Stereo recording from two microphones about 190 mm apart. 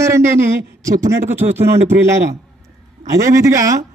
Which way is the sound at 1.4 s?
30° right (ahead or behind).